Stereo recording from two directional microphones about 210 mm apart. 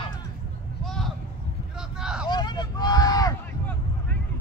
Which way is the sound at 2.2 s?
20° left (ahead or behind).